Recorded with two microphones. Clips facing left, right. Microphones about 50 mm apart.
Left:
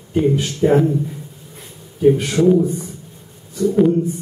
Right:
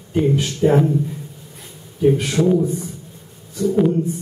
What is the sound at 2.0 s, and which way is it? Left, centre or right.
Speech, centre.